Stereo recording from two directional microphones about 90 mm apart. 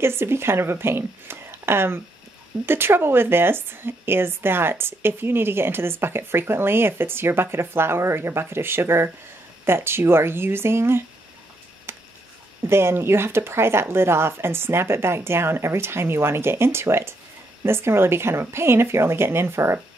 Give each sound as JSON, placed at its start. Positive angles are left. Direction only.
{"t": 0.0, "sound": "a woman's voice", "side_deg": -25}
{"t": 11.9, "sound": "a sound", "side_deg": -25}
{"t": 12.6, "sound": "a woman's voice", "side_deg": -30}